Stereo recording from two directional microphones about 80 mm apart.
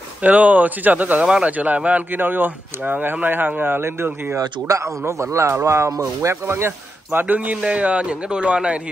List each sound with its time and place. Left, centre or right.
0.2 s speech: centre
4.4 s a man's voice: right
6.4 s speech: right
7.1 s a man's voice: centre